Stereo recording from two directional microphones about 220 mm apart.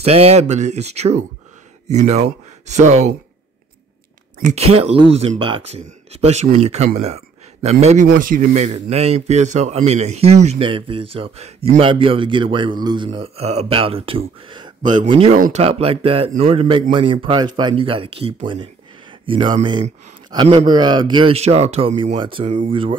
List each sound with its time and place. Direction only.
0.0 s speech: 30° right (ahead or behind)
4.4 s speech: 30° right (ahead or behind)
7.0 s a sound: 30° right (ahead or behind)
7.8 s speech: 35° right (ahead or behind)
15.3 s speech: 35° right (ahead or behind)